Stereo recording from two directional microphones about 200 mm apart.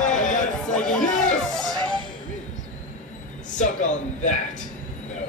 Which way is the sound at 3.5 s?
40° left (ahead or behind).